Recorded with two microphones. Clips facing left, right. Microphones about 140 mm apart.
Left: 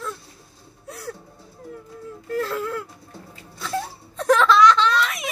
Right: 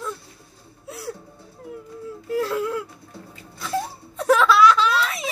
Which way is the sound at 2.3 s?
10° right (ahead or behind).